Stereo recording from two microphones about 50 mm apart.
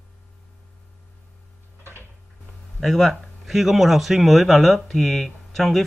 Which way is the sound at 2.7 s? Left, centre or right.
Centre.